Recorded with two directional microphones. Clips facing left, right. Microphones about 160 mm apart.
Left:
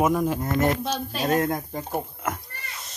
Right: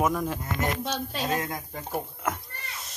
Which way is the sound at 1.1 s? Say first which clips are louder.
Left 9 dB; 60° left (ahead or behind).